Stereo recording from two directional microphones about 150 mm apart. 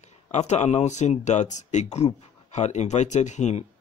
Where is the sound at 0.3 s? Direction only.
50° left (ahead or behind).